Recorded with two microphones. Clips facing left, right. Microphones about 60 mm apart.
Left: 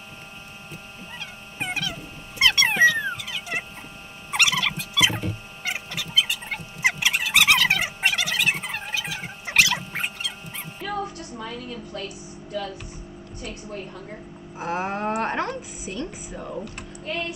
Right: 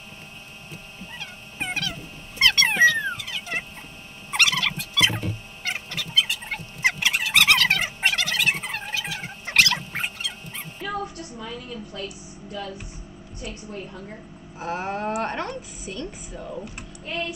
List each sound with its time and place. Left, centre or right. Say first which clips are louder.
0.9 s dog: right 1 dB; centre
4.3 s turkey: even; centre
11.3 s a woman's voice: left 2 dB; left
14.6 s a woman's voice: left 1 dB; centre